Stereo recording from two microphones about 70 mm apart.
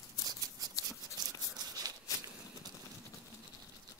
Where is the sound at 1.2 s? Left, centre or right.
Right.